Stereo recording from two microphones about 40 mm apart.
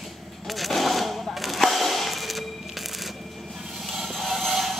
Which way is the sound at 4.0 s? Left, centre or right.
Centre.